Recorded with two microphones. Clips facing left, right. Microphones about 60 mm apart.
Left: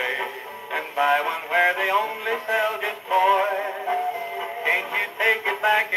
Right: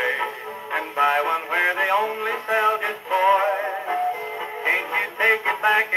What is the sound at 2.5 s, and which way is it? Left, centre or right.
Synthetic singing, right.